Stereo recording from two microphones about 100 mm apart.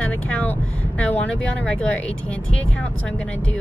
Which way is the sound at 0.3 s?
15° left (ahead or behind).